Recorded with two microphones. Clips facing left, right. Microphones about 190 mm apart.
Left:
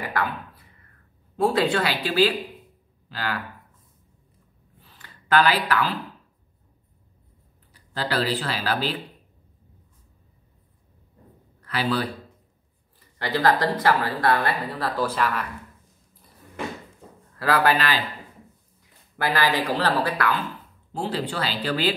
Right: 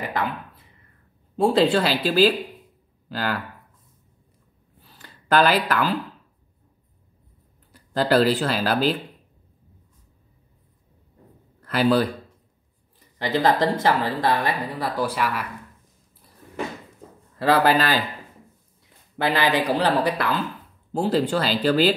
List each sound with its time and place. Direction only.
1.3 s speech: 30° right (ahead or behind); by 3.3 s 45° right (ahead or behind)
4.8 s a sound: 40° right (ahead or behind)
7.7 s speech: 45° right (ahead or behind)
11.6 s a man's voice: 45° right (ahead or behind)
13.2 s speech: 20° right (ahead or behind)
17.4 s speech: 25° right (ahead or behind)
17.7 s speech: 45° right (ahead or behind)
19.1 s speech: 20° right (ahead or behind)
20.9 s speech: 45° right (ahead or behind)